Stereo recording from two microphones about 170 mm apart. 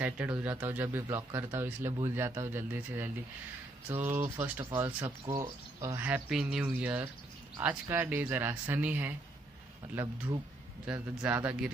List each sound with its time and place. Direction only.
0.0 s speech: 10° right (ahead or behind)
10.9 s speech: 10° right (ahead or behind)